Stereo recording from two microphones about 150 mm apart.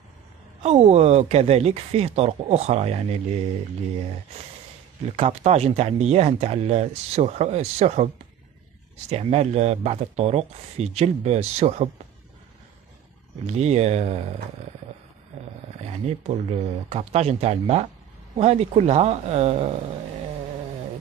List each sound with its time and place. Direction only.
0.6 s speech: 45° right (ahead or behind)
5.1 s speech: 45° right (ahead or behind)
9.1 s speech: 45° right (ahead or behind)
13.5 s speech: 45° right (ahead or behind)
16.4 s speech: 45° right (ahead or behind)